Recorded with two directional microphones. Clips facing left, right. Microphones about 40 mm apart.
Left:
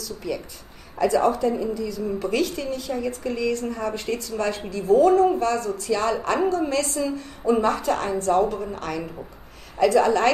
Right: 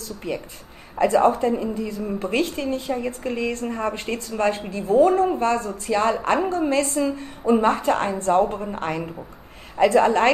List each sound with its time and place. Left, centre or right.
0.0 s a woman's voice: right